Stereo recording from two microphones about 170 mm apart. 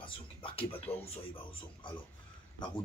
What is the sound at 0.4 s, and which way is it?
Speech, 30° left (ahead or behind).